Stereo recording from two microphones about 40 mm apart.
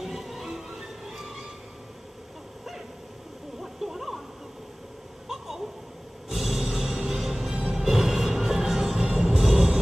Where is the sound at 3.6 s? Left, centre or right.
Centre.